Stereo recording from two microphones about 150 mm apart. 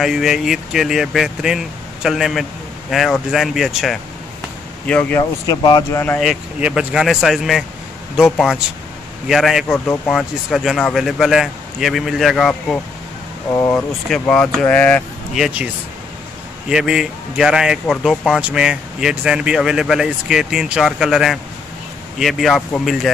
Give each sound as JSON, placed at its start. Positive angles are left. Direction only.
{"t": 0.0, "sound": "speech", "side_deg": 0}
{"t": 5.5, "sound": "speech", "side_deg": 25}
{"t": 5.9, "sound": "speech", "side_deg": 15}
{"t": 6.1, "sound": "speech", "side_deg": -5}
{"t": 13.5, "sound": "speech", "side_deg": 20}
{"t": 13.7, "sound": "speech", "side_deg": 0}
{"t": 15.3, "sound": "speech", "side_deg": -5}